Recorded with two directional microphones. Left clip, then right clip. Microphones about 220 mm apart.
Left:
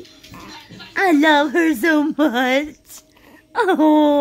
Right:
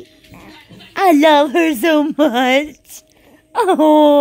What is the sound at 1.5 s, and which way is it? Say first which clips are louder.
Speech: right 3 dB; 15° right (ahead or behind).